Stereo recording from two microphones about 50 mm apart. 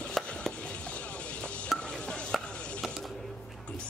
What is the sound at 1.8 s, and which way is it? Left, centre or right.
Chopping, centre.